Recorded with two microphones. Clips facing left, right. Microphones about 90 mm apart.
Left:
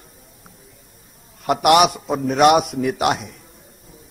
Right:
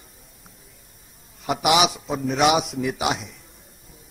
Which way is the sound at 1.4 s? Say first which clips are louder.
Left 5 dB; centre (ahead or behind).